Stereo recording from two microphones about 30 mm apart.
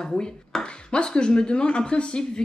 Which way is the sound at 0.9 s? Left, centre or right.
Left.